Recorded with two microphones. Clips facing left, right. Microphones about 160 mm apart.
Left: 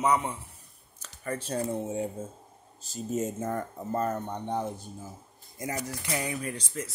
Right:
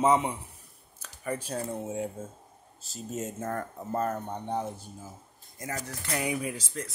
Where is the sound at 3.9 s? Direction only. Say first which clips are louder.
Left 1 dB; 10° right (ahead or behind).